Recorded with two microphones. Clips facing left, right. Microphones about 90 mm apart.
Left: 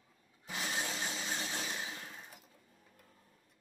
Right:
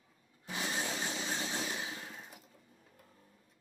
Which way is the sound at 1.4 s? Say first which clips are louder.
Right 2 dB; 15° right (ahead or behind).